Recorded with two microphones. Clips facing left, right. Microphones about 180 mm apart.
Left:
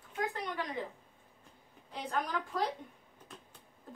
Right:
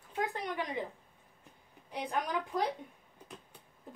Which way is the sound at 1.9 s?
15° right (ahead or behind).